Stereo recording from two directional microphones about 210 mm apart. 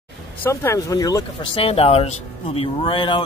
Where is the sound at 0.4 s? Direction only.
10° left (ahead or behind).